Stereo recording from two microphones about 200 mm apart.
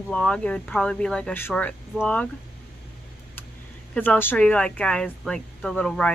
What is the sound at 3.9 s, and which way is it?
Speech, 5° left (ahead or behind).